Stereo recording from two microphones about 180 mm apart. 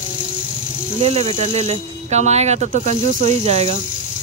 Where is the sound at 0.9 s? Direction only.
35° right (ahead or behind).